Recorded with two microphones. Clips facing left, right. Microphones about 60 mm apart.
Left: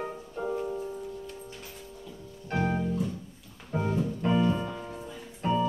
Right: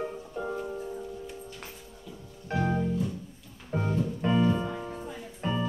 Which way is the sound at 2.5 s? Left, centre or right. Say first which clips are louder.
Even; left.